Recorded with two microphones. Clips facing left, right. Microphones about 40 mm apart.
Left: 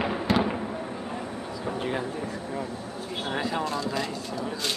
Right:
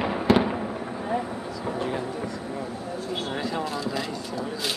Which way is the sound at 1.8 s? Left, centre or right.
Centre.